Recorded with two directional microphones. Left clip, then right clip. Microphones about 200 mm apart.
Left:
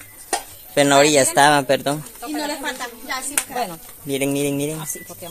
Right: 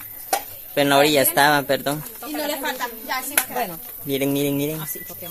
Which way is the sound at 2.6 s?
20° right (ahead or behind).